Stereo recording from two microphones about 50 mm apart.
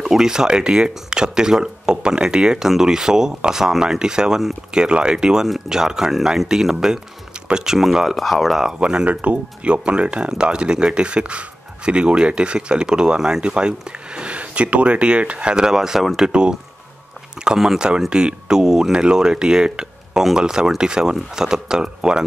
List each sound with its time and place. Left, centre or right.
0.0 s speech: centre
8.7 s speech: centre